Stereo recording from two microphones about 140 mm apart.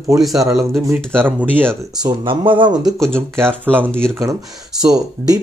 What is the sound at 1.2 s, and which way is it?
Speech, 15° right (ahead or behind).